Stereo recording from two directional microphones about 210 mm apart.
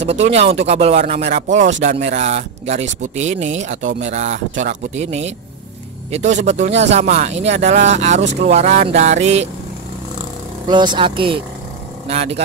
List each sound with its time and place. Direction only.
0.0 s speech: 30° right (ahead or behind)
10.7 s speech: 20° right (ahead or behind)